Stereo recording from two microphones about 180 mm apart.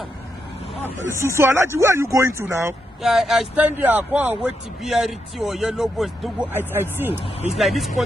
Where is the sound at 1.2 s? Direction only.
15° right (ahead or behind).